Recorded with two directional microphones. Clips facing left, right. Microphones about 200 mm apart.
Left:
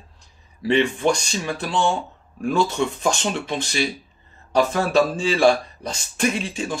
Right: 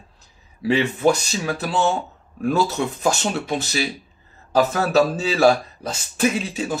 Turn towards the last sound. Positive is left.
turn(degrees=-5)  # may be behind; listen again after turning